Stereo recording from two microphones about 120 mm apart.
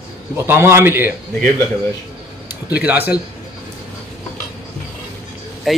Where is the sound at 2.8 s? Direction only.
15° right (ahead or behind).